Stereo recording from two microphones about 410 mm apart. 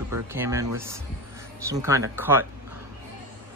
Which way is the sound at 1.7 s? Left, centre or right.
Centre.